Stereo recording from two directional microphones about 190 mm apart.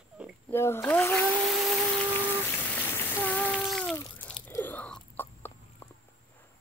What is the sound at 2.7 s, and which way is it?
Water, 10° left (ahead or behind).